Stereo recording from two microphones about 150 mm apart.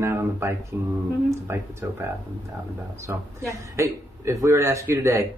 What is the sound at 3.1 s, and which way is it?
A man's voice, 15° right (ahead or behind).